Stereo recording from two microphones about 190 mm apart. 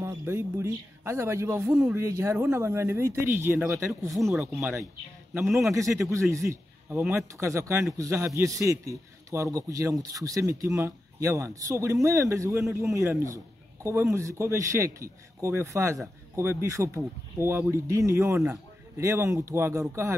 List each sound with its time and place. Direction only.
0.0 s speech: 15° right (ahead or behind)
4.1 s speech: centre (ahead or behind)
4.6 s a man's voice: 10° right (ahead or behind)